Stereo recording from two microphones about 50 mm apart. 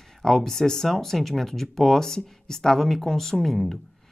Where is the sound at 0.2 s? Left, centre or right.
Centre.